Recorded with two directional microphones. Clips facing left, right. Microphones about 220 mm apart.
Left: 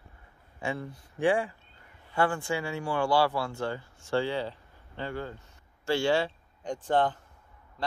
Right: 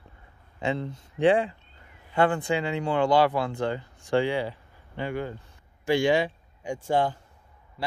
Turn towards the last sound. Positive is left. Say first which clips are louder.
# right 1 dB
turn(degrees=-10)  # may be behind; listen again after turning